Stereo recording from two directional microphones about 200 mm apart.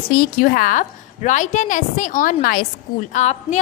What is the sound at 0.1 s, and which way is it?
A woman's voice, 45° left (ahead or behind).